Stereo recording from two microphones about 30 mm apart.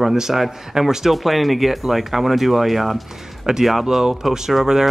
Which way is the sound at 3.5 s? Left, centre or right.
Centre.